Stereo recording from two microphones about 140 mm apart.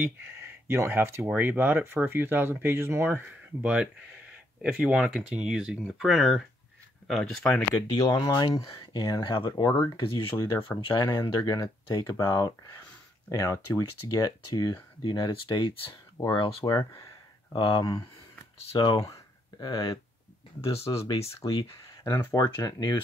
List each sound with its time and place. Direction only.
0.0 s speech: 15° right (ahead or behind); by 7.6 s 5° left (ahead or behind)
8.0 s speech: 25° left (ahead or behind)
8.3 s speech: 35° left (ahead or behind)
11.1 s speech: 25° left (ahead or behind)
17.6 s speech: 40° left (ahead or behind)